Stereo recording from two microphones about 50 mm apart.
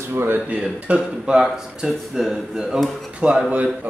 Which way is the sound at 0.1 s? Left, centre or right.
Right.